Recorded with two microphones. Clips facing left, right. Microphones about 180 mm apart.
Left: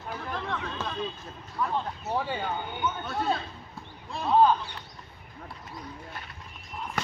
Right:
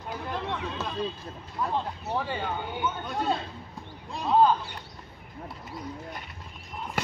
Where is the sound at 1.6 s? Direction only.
20° right (ahead or behind).